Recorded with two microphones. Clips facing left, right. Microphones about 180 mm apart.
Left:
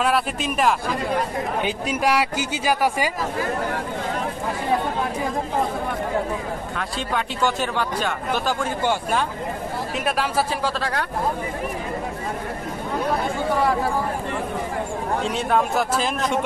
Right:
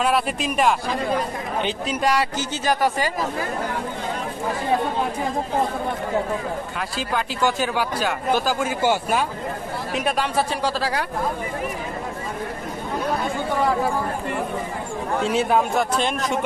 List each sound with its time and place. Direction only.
0.0 s speech: centre (ahead or behind)
6.8 s speech: centre (ahead or behind)
15.2 s speech: 5° right (ahead or behind)